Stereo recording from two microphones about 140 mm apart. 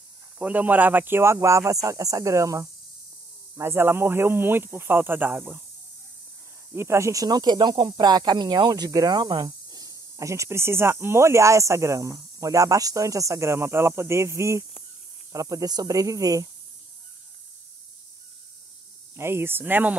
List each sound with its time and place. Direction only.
0.4 s speech: 10° right (ahead or behind)
6.7 s speech: 20° right (ahead or behind)
19.1 s speech: 15° right (ahead or behind)